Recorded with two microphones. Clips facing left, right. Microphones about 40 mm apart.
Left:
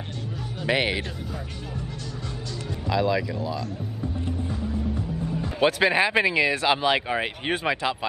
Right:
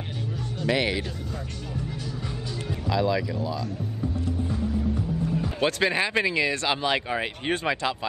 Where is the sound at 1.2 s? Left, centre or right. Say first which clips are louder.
Even; centre.